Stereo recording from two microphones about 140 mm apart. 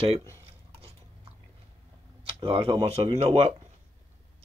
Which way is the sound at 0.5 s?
45° right (ahead or behind).